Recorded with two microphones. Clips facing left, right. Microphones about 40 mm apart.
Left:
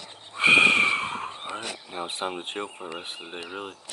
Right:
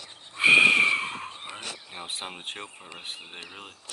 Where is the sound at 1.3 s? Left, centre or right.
Left.